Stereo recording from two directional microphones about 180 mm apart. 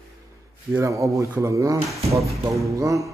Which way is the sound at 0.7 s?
15° right (ahead or behind).